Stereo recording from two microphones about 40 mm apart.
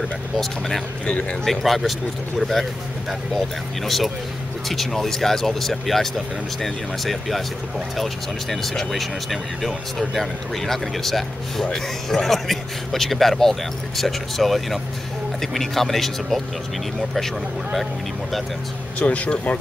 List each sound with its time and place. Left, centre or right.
0.4 s speech: centre
18.9 s speech: left